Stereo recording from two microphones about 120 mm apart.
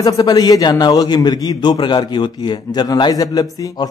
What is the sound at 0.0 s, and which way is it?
A man's voice, 30° left (ahead or behind).